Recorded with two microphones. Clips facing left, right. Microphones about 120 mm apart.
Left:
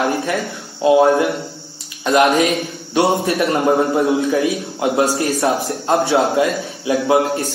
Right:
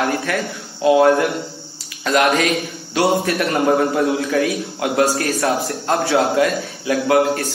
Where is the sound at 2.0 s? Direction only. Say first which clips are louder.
Left 3 dB; 20° left (ahead or behind).